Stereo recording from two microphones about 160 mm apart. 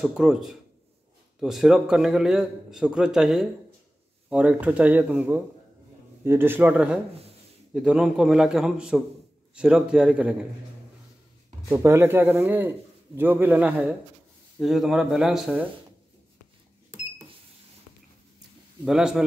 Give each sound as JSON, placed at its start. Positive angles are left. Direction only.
{"t": 0.0, "sound": "a man's voice", "side_deg": 0}
{"t": 11.7, "sound": "a man's voice", "side_deg": -15}
{"t": 18.9, "sound": "a man's voice", "side_deg": 0}